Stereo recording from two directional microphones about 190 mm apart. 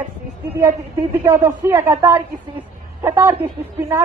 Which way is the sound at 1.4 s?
15° right (ahead or behind).